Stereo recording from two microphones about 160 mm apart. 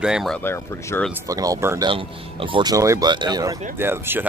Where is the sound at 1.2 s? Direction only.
20° right (ahead or behind).